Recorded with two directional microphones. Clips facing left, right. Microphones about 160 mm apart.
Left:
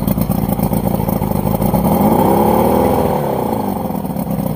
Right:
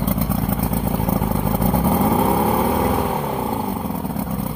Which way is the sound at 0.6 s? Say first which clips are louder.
Left 6 dB; 35° left (ahead or behind).